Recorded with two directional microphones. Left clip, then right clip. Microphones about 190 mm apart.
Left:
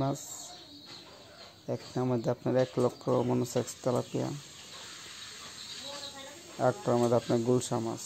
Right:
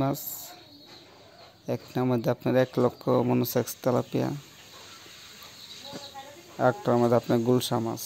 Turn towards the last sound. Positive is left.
turn(degrees=-15)  # may be behind; listen again after turning